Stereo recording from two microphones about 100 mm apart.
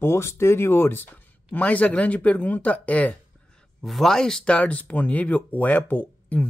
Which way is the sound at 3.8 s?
Centre (ahead or behind).